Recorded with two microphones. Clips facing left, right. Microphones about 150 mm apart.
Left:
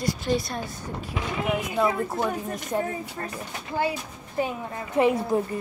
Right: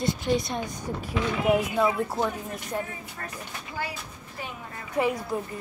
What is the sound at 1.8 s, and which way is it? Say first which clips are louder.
Speech: even; centre (ahead or behind).